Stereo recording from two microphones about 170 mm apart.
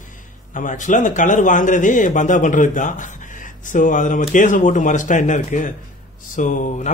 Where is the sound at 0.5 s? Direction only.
50° left (ahead or behind).